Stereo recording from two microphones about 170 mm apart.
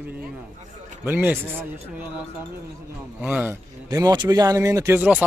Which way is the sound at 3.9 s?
20° right (ahead or behind).